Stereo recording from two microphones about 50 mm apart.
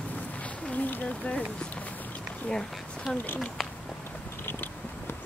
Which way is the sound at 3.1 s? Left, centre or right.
Centre.